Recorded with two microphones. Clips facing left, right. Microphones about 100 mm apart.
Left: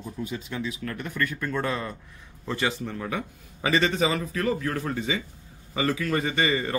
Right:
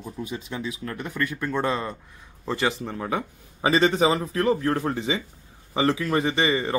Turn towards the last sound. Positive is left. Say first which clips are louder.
# right 2 dB
turn(degrees=-20)  # may be behind; listen again after turning